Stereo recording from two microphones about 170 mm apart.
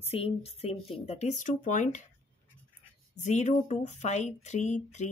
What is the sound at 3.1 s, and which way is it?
Speech, 45° left (ahead or behind).